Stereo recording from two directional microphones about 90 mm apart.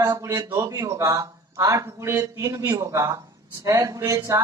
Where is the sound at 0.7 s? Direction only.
40° right (ahead or behind).